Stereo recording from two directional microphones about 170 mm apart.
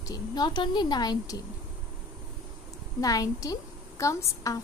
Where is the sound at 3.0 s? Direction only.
20° left (ahead or behind).